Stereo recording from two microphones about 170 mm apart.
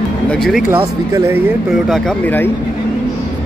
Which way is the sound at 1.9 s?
5° left (ahead or behind).